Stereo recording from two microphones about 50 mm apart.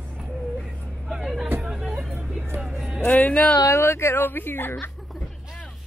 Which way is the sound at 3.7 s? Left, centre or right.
Left.